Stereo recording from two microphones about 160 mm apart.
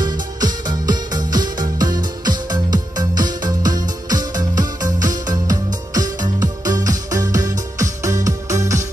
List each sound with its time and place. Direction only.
0.0 s music: 25° right (ahead or behind)